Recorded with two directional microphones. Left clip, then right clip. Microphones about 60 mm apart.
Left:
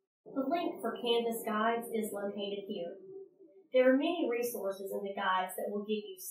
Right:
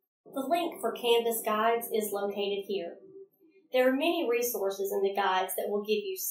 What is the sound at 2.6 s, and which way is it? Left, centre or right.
Speech, right.